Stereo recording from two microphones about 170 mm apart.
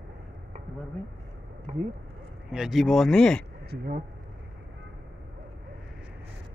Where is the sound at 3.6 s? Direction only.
60° right (ahead or behind).